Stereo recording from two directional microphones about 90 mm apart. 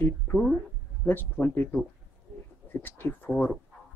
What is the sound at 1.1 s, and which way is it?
Speech, 20° left (ahead or behind).